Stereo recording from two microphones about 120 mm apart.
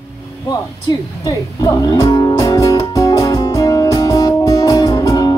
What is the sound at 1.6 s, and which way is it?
Music, 35° left (ahead or behind).